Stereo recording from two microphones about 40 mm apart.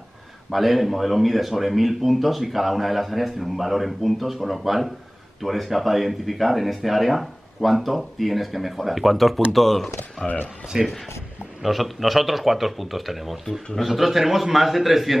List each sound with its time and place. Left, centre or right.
0.5 s speech: centre
10.2 s speech: left
10.7 s speech: centre
11.6 s speech: centre